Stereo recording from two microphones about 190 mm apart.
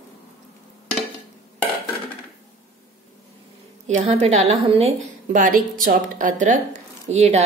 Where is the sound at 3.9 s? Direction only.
35° right (ahead or behind).